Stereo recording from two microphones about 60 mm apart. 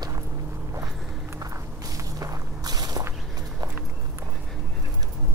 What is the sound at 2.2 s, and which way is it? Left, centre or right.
Walk, right.